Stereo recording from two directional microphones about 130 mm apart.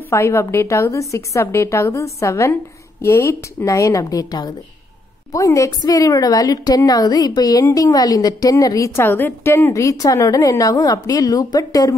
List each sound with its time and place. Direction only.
0.1 s a woman's voice: 20° left (ahead or behind)